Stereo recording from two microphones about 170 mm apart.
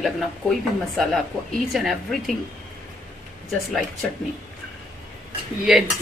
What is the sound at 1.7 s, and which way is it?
Speech, centre (ahead or behind).